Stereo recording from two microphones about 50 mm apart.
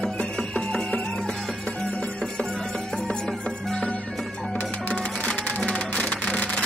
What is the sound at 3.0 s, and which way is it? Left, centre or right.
Music, centre.